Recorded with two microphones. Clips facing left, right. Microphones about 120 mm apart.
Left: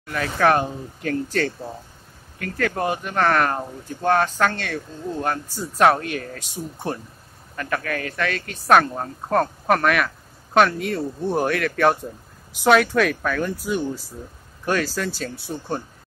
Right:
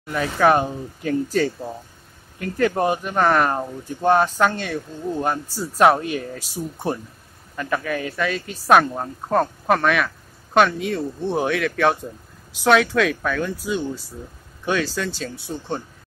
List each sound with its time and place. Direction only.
0.0 s speech: 10° right (ahead or behind)
2.3 s speech: 20° right (ahead or behind)
3.0 s speech: 5° right (ahead or behind)
7.5 s speech: 10° right (ahead or behind); by 15.3 s 5° left (ahead or behind)